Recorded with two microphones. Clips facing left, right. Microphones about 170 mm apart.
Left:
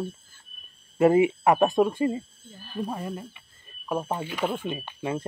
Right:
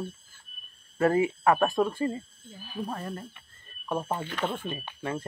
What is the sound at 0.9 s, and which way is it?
Speech, 15° left (ahead or behind).